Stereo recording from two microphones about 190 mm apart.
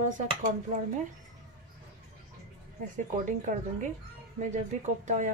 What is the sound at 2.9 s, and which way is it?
Speech, 45° right (ahead or behind).